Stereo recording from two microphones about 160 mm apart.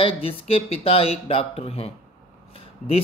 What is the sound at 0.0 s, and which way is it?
Speech, 35° left (ahead or behind).